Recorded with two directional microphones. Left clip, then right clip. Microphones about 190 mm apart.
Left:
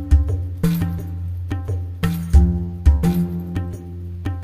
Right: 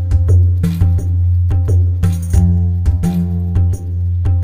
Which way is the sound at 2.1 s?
Centre (ahead or behind).